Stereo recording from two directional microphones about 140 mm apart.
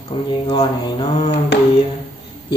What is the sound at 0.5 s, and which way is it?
Mantra, 30° left (ahead or behind).